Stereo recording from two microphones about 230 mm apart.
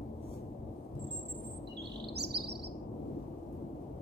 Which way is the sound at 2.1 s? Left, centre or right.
Right.